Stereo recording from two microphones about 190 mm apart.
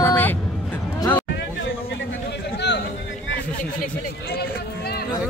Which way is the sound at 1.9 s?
70° left (ahead or behind).